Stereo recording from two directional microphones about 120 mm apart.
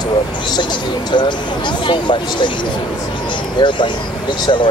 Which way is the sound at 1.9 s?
40° left (ahead or behind).